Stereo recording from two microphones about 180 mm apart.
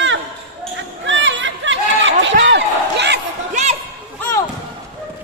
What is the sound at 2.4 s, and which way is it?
Slam, 75° right (ahead or behind).